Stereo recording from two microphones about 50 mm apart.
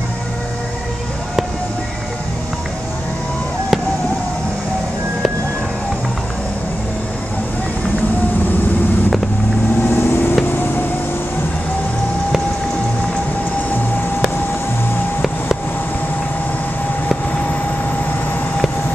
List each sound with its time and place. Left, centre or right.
9.8 s vehicle: left